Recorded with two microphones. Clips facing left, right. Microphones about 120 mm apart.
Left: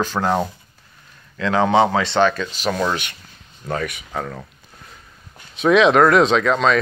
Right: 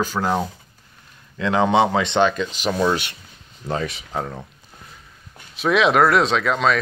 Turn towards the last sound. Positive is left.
turn(degrees=-5)  # may be behind; listen again after turning